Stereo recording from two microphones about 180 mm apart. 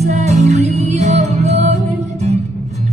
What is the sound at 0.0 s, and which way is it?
Music, 35° right (ahead or behind).